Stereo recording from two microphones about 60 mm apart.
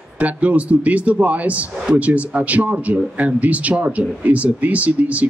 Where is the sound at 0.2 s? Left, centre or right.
Right.